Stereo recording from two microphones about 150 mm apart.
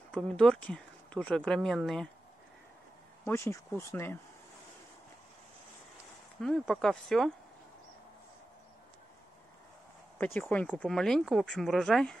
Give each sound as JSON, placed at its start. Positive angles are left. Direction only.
{"t": 0.1, "sound": "speech", "side_deg": 5}
{"t": 3.3, "sound": "speech", "side_deg": 15}
{"t": 6.4, "sound": "speech", "side_deg": 5}
{"t": 10.1, "sound": "speech", "side_deg": 10}